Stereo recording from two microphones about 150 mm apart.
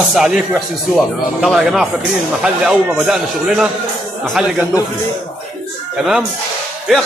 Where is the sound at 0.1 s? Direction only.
5° right (ahead or behind).